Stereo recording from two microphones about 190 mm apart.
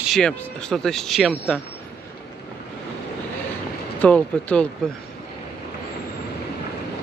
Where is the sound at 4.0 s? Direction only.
5° left (ahead or behind).